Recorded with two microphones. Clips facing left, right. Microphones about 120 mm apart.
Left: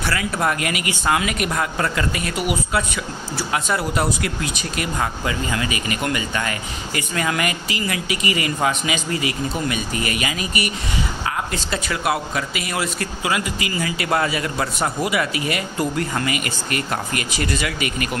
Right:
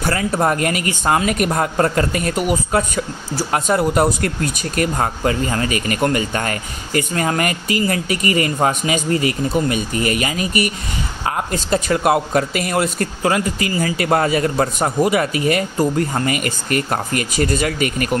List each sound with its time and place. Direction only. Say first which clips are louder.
0.0 s speech: right 4 dB; 40° right (ahead or behind)